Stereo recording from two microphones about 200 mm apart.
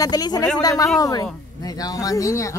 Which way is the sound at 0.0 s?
20° left (ahead or behind).